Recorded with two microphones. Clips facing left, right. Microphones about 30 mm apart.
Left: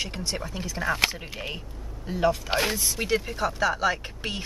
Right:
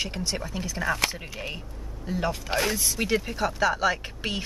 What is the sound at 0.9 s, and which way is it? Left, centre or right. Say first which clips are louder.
Speech: left 2 dB; centre.